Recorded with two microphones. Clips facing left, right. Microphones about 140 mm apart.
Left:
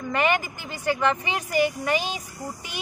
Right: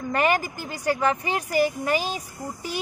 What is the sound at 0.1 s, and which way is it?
Speech, 40° right (ahead or behind).